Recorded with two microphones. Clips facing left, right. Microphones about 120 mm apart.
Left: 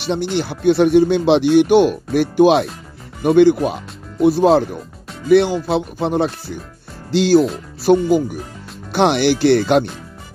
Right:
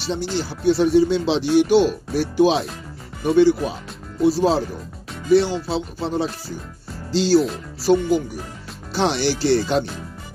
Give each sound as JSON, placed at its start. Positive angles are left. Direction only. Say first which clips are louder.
{"t": 0.0, "sound": "speech", "louder": "left 4 dB", "side_deg": 60}
{"t": 5.7, "sound": "speech", "louder": "left 5 dB", "side_deg": 60}